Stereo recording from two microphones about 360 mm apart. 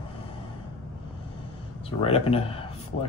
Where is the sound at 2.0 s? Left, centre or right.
Centre.